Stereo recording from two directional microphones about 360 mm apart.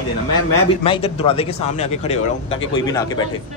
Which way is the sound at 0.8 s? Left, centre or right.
Centre.